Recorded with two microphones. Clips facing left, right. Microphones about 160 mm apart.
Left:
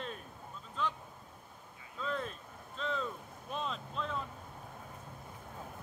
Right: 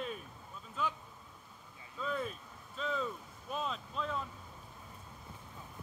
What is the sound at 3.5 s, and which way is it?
Boat, centre (ahead or behind).